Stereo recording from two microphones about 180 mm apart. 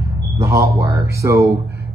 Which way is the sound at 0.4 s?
15° right (ahead or behind).